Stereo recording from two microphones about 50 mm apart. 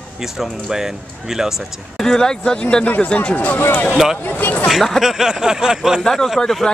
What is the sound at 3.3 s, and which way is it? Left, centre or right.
Speech, left.